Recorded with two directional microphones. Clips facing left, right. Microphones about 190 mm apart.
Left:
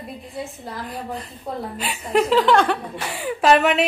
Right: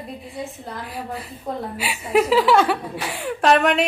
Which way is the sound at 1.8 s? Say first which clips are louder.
Right 1 dB; 5° right (ahead or behind).